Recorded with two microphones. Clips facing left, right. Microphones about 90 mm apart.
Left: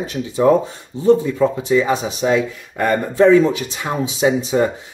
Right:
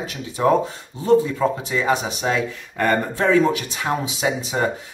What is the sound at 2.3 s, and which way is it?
Speech, 15° left (ahead or behind).